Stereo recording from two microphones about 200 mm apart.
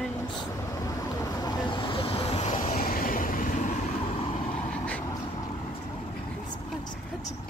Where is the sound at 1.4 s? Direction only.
25° left (ahead or behind); by 3.7 s 45° left (ahead or behind).